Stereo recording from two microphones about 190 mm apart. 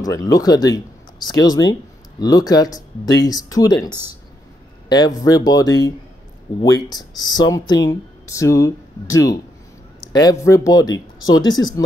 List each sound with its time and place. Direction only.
0.0 s speech: 20° left (ahead or behind)